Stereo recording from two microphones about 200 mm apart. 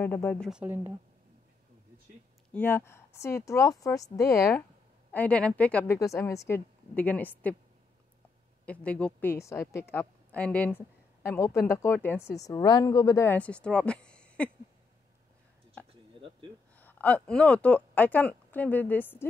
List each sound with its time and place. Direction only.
0.0 s a woman's voice: 10° left (ahead or behind)
0.5 s speech: 5° right (ahead or behind)
2.5 s a woman's voice: 10° left (ahead or behind)
8.6 s a woman's voice: 5° left (ahead or behind)
15.9 s a sound: 25° right (ahead or behind)
16.7 s speech: 10° left (ahead or behind)